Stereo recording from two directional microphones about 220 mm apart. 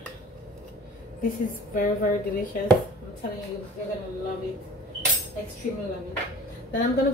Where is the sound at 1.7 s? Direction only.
40° left (ahead or behind).